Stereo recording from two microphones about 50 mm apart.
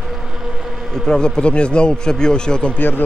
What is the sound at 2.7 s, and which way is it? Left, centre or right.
Speech, left.